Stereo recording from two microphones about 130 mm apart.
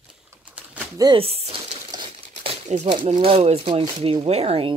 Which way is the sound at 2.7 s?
60° right (ahead or behind).